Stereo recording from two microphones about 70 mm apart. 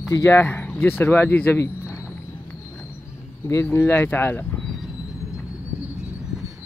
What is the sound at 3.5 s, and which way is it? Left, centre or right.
Speech, left.